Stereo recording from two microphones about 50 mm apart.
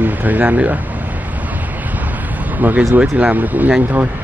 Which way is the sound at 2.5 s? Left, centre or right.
Right.